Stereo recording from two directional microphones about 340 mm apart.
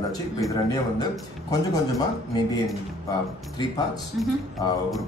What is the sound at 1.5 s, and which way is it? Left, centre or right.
Speech, centre.